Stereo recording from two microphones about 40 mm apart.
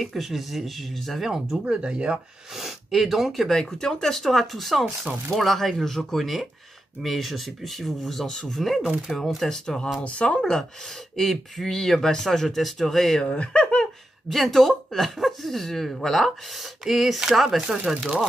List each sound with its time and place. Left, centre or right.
0.0 s speech: centre
1.2 s speech: centre
1.7 s speech: right
2.5 s speech: centre
3.5 s speech: centre
10.0 s speech: left
11.1 s speech: centre
13.2 s speech: left
14.3 s speech: centre
16.8 s speech: centre
17.6 s speech: centre